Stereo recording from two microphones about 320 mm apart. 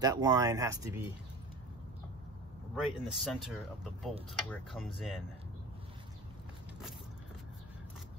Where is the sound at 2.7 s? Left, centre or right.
Centre.